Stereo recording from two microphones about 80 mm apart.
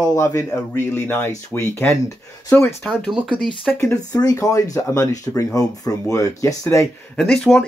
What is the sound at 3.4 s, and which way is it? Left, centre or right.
Speech, centre.